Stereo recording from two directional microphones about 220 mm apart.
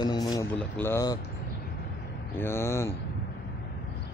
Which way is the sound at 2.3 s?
10° left (ahead or behind).